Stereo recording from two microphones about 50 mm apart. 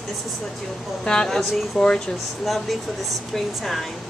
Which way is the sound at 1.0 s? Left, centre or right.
Centre.